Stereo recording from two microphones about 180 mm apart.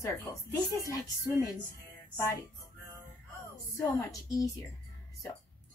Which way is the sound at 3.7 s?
15° left (ahead or behind).